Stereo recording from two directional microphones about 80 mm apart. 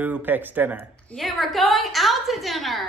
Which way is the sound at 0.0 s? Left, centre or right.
Right.